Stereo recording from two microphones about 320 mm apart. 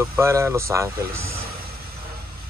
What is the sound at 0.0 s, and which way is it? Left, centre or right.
Speech, centre.